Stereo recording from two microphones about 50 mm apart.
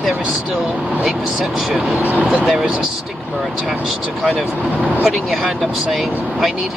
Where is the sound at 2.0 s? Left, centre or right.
Right.